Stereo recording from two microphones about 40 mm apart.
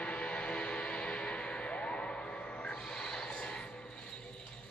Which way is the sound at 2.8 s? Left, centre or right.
Centre.